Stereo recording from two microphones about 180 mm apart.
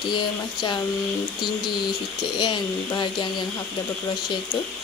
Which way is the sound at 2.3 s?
25° left (ahead or behind).